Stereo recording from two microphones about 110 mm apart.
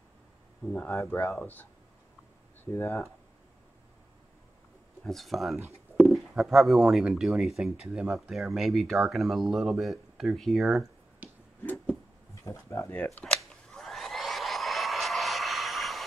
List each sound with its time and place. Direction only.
0.7 s speech: 15° left (ahead or behind)
0.9 s speech: 25° left (ahead or behind)
5.0 s speech: centre (ahead or behind)
11.2 s finger snapping: 15° right (ahead or behind)
12.4 s speech: 25° left (ahead or behind)
13.0 s a sound: 10° left (ahead or behind)